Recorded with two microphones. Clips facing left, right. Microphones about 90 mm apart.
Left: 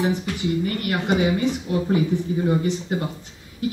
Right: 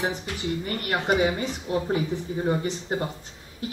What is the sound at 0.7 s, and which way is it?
Speech, 35° right (ahead or behind).